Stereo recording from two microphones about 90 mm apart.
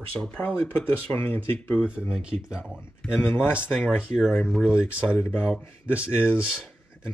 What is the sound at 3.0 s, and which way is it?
Speech, 10° left (ahead or behind).